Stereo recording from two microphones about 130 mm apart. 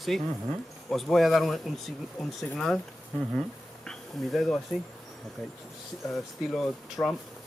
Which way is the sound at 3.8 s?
Centre (ahead or behind).